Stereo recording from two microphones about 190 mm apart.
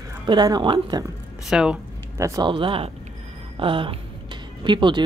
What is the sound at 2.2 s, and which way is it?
Speech, 15° right (ahead or behind).